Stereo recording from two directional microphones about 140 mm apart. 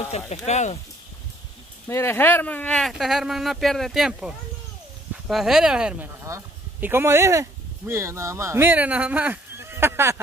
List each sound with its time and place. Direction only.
0.5 s speech: 55° left (ahead or behind)
1.9 s speech: 15° left (ahead or behind); by 10.2 s 15° right (ahead or behind)